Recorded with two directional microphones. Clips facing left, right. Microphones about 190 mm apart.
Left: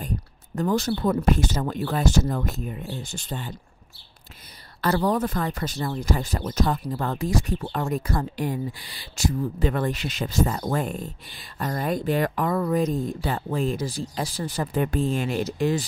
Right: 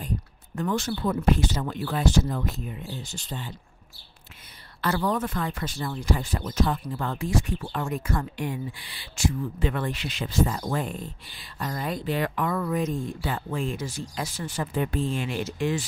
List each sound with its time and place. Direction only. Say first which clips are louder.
0.6 s speech: left 4 dB; 35° left (ahead or behind)
4.8 s speech: left 3 dB; 35° left (ahead or behind)